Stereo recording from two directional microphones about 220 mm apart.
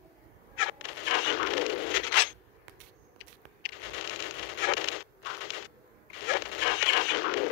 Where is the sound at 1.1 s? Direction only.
55° left (ahead or behind).